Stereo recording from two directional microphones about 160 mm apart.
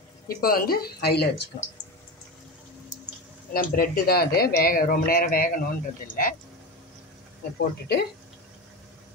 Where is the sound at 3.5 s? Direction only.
70° left (ahead or behind).